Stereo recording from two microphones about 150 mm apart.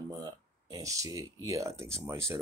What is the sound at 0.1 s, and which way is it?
Speech, 25° right (ahead or behind).